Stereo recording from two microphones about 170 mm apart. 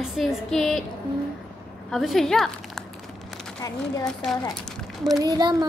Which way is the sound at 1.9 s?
Centre (ahead or behind).